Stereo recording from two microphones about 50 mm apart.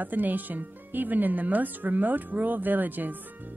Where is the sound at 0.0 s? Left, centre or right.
Right.